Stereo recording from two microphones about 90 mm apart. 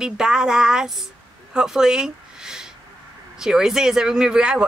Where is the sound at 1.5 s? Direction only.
5° right (ahead or behind).